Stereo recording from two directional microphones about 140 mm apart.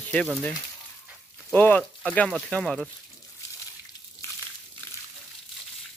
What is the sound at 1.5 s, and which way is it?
Speech, 10° left (ahead or behind).